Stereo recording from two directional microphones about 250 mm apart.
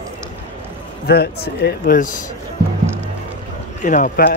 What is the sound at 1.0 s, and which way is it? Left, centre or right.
Speech, left.